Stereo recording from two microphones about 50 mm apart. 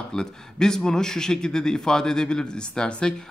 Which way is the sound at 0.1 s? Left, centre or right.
Centre.